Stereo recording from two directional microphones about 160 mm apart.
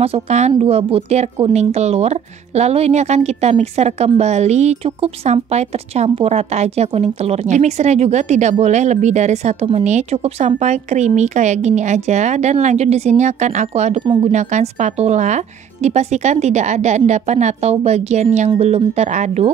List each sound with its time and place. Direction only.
0.0 s speech: 40° right (ahead or behind)